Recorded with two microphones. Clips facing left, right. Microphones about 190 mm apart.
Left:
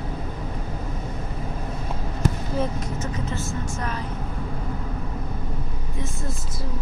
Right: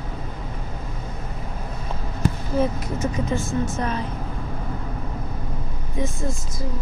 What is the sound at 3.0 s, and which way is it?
Speech, 15° right (ahead or behind).